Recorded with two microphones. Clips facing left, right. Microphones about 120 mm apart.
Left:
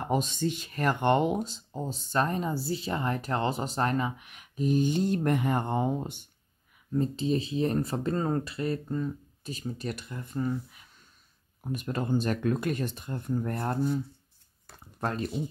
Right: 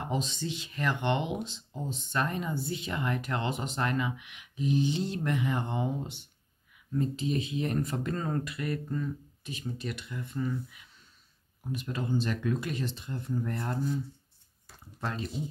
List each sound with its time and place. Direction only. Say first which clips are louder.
0.1 s speech: left 7 dB; 50° left (ahead or behind)
6.9 s speech: left 3 dB; 30° left (ahead or behind)
11.6 s speech: left 3 dB; 50° left (ahead or behind)
14.7 s a sound: left 4 dB; 50° left (ahead or behind)